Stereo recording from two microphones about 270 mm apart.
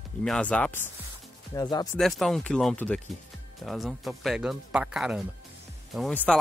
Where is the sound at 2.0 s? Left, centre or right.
Centre.